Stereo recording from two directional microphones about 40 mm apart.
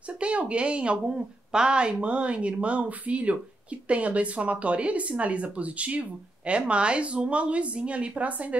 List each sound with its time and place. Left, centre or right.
0.2 s speech: right